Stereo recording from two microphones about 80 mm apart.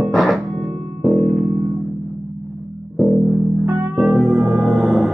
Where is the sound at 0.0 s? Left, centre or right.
Centre.